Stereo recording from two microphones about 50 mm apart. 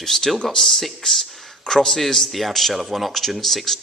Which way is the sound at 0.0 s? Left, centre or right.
Centre.